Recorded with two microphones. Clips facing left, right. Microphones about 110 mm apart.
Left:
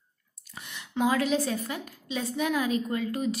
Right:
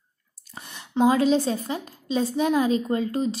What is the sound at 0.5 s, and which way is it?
A woman's voice, 35° right (ahead or behind).